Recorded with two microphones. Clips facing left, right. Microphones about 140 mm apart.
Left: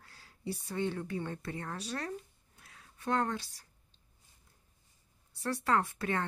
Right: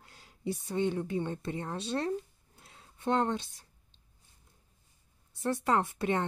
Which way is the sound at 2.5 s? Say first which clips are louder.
Right 2 dB; 25° right (ahead or behind).